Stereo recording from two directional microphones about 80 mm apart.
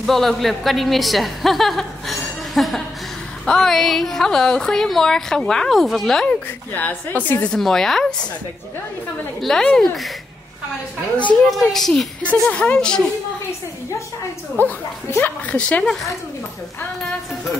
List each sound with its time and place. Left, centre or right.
0.0 s a man's voice: centre
6.2 s a woman's voice: centre
7.4 s speech: centre
9.4 s speech: centre
11.5 s speech: centre
12.2 s speech: centre
14.6 s speech: left; by 16.2 s centre